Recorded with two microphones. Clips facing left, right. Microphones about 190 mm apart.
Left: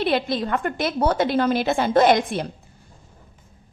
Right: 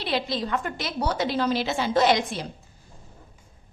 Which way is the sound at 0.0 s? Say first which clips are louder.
Left 5 dB; 55° left (ahead or behind).